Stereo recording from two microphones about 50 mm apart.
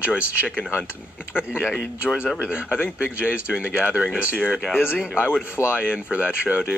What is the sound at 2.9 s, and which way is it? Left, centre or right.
Speech, right.